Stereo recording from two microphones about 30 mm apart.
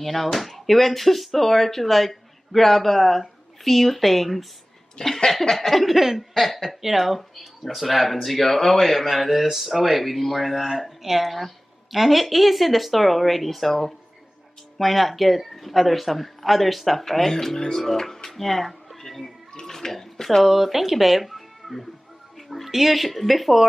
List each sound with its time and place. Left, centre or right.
0.0 s speech: centre
5.0 s a sound: left
5.4 s speech: centre
5.7 s speech: centre
5.9 s speech: centre
6.3 s speech: centre
17.0 s speech: centre
18.9 s a sound: centre
19.6 s speech: centre
20.4 s speech: centre